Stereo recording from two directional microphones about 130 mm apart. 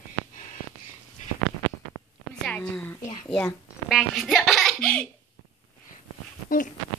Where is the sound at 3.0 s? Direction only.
70° left (ahead or behind).